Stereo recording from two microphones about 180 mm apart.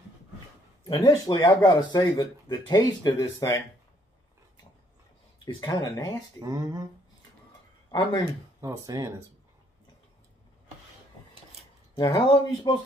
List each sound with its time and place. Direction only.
0.8 s speech: 25° left (ahead or behind)
5.4 s speech: 25° left (ahead or behind)
6.4 s speech: 20° right (ahead or behind)
7.9 s speech: 20° left (ahead or behind)
8.5 s speech: 15° right (ahead or behind)
11.9 s speech: 25° left (ahead or behind)